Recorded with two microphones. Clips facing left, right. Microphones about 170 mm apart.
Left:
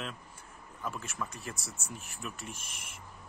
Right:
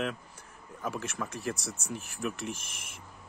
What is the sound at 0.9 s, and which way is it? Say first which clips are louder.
Speech: right 6 dB; 80° right.